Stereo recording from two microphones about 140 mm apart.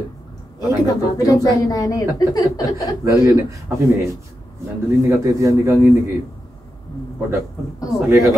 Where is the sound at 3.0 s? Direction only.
20° right (ahead or behind).